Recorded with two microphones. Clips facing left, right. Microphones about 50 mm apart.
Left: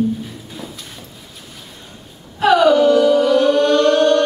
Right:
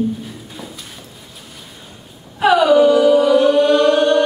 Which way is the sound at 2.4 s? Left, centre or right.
Centre.